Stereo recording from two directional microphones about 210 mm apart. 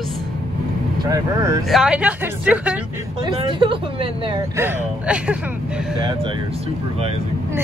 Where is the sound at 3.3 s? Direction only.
25° right (ahead or behind).